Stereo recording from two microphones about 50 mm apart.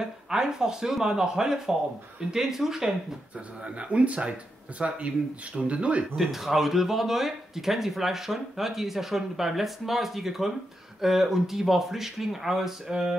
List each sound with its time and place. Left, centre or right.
0.0 s speech: centre
3.3 s speech: right
6.1 s speech: centre